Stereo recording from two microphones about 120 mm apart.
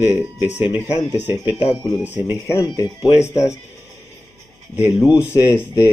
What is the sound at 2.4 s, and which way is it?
Speech, 20° left (ahead or behind).